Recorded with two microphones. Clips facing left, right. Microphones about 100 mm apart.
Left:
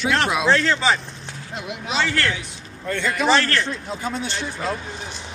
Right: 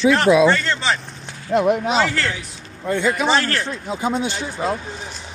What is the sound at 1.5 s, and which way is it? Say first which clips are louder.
Speech: right 16 dB; 50° right (ahead or behind).